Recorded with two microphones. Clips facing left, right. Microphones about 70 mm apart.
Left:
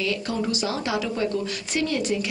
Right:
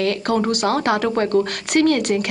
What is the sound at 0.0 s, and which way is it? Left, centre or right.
A woman's voice, right.